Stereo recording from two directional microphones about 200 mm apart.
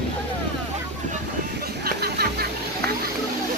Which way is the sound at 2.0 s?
50° right (ahead or behind).